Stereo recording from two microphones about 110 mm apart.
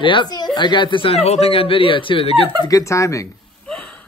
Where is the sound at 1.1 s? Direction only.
70° left (ahead or behind).